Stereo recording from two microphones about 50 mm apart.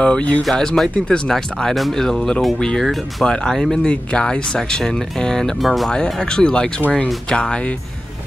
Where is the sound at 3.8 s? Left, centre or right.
Left.